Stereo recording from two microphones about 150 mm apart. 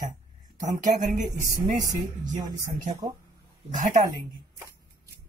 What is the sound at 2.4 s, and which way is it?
Speech, 25° right (ahead or behind).